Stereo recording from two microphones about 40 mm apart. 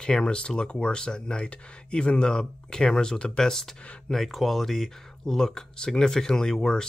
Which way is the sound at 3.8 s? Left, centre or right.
Left.